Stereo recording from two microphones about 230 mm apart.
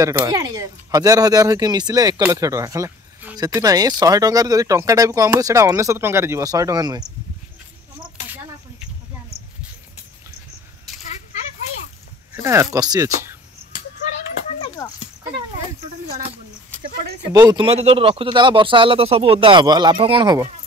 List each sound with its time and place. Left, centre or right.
0.0 s speech: centre
12.4 s speech: centre
14.8 s a sound: centre
17.3 s speech: centre